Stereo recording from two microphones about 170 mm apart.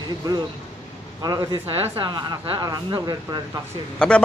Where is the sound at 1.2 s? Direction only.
25° right (ahead or behind).